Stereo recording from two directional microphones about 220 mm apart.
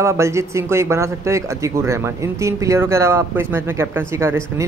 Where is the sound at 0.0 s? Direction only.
15° right (ahead or behind).